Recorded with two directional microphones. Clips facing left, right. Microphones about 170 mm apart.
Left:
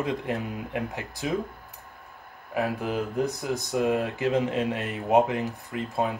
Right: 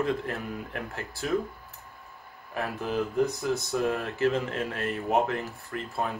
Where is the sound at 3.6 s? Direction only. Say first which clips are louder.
Left 3 dB; 15° left (ahead or behind).